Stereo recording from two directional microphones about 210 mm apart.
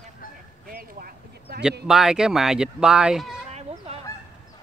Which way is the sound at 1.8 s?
5° right (ahead or behind).